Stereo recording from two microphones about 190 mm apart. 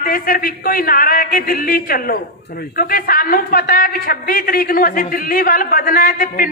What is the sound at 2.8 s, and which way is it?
A man's voice, 50° left (ahead or behind).